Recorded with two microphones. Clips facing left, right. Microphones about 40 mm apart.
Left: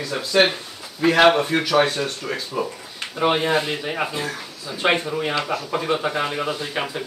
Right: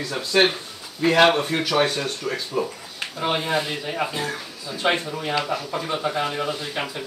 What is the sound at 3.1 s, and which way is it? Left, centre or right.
Speech, left.